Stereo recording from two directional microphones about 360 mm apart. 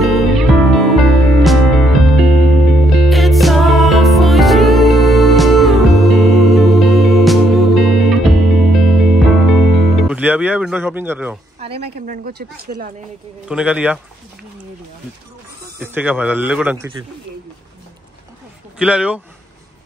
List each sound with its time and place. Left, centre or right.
0.0 s music: centre
11.6 s a woman's voice: centre
12.3 s speech: right
13.5 s speech: centre
15.8 s speech: centre
18.8 s speech: centre